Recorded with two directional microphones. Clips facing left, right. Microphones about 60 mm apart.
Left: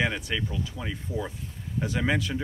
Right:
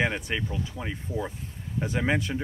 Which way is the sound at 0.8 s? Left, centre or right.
Centre.